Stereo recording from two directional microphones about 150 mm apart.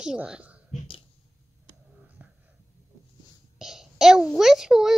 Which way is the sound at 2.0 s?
10° right (ahead or behind).